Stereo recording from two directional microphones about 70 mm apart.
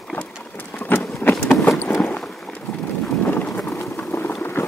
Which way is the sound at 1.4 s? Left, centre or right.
Left.